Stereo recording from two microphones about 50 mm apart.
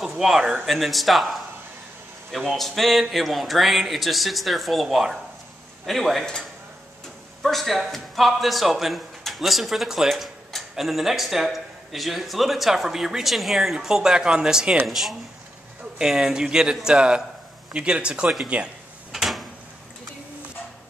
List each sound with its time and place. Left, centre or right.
0.7 s a man's voice: centre
7.4 s a man's voice: centre
14.9 s a man's voice: centre; by 18.7 s right
19.1 s drawer open or close: centre